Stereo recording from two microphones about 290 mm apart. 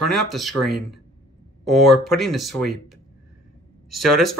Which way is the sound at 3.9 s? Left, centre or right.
Right.